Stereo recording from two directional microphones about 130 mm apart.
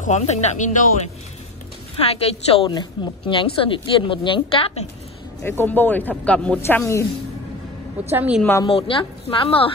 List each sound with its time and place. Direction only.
0.0 s speech: 60° left (ahead or behind)
2.0 s a woman's voice: 50° left (ahead or behind)
2.7 s speech: 35° left (ahead or behind)
3.4 s a woman's voice: 45° left (ahead or behind)
5.4 s speech: 15° left (ahead or behind)
6.6 s speech: 20° left (ahead or behind)
8.1 s a woman's voice: 15° right (ahead or behind)
8.6 s a woman's voice: 45° left (ahead or behind)